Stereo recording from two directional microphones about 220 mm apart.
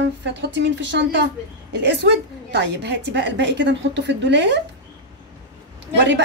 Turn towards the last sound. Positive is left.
turn(degrees=-55)  # may be behind; listen again after turning